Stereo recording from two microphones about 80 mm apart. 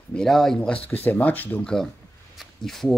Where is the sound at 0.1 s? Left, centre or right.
Centre; by 1.7 s left.